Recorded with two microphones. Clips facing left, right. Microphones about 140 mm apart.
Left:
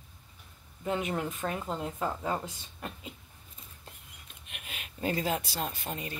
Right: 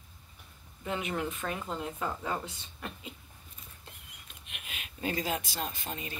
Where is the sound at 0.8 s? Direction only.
35° left (ahead or behind).